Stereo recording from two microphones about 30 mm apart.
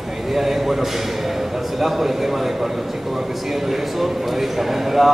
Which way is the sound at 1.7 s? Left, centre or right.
Centre.